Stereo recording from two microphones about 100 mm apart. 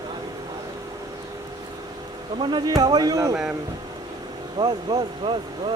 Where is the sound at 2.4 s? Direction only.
50° right (ahead or behind).